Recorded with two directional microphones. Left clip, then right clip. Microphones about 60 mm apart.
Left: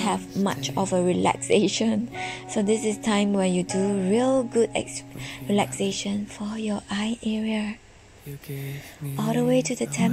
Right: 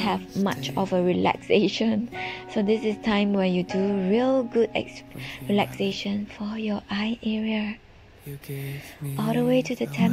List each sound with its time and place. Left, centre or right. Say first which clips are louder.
0.3 s speech: even; centre
0.6 s speech: even; left
8.5 s speech: right 1 dB; centre; by 10.0 s left